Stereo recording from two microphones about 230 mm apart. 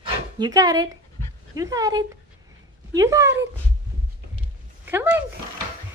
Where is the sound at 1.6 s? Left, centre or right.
Centre.